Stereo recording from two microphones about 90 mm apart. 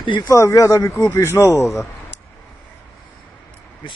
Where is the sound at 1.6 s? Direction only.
Centre (ahead or behind).